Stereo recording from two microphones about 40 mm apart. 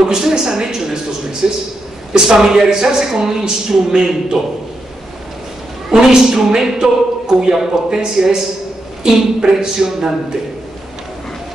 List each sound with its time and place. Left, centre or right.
0.0 s a woman's voice: centre
5.9 s a woman's voice: centre